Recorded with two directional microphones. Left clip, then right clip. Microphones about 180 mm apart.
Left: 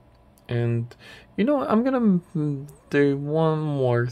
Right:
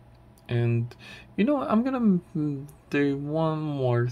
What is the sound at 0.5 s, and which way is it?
Speech, 10° left (ahead or behind).